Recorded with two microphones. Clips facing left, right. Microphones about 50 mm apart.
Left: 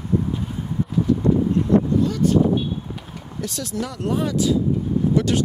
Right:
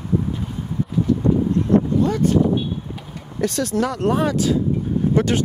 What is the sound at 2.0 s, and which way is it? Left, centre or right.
Speech, right.